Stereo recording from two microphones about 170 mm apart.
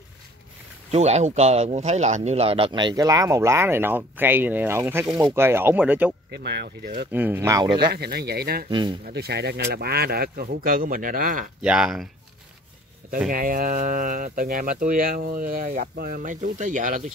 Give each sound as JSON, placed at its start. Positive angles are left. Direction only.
{"t": 0.9, "sound": "speech", "side_deg": -40}
{"t": 6.3, "sound": "speech", "side_deg": -75}
{"t": 7.1, "sound": "speech", "side_deg": -10}
{"t": 7.8, "sound": "speech", "side_deg": -70}
{"t": 8.6, "sound": "speech", "side_deg": -25}
{"t": 9.1, "sound": "speech", "side_deg": -75}
{"t": 11.6, "sound": "speech", "side_deg": -5}
{"t": 13.3, "sound": "speech", "side_deg": -55}